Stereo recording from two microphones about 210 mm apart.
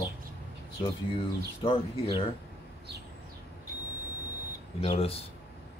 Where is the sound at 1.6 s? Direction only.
25° left (ahead or behind).